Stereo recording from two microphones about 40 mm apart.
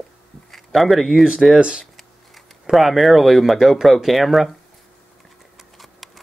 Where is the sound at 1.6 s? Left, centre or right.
Right.